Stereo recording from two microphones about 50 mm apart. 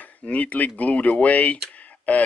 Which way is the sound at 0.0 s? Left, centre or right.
Left.